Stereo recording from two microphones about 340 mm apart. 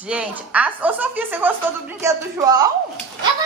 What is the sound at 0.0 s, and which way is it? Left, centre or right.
A woman's voice, centre.